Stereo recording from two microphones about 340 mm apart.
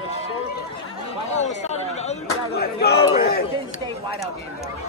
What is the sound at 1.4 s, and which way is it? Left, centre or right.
Chatter, centre.